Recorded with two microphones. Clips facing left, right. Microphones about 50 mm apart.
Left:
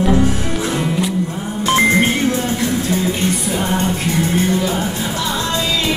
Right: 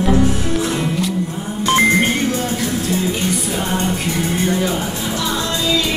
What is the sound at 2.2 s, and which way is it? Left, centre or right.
Music, left.